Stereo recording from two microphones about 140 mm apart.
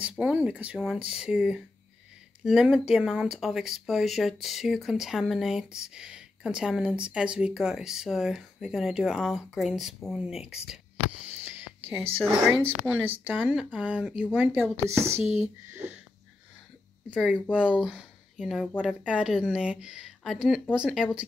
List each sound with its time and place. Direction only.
0.0 s speech: 10° right (ahead or behind)
11.2 s sniff: 10° right (ahead or behind)
12.0 s a woman's voice: 45° right (ahead or behind)
12.4 s speech: 15° right (ahead or behind)
17.1 s speech: 5° right (ahead or behind)